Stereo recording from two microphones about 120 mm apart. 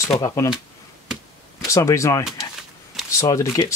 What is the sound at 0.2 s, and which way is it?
Speech, 25° left (ahead or behind).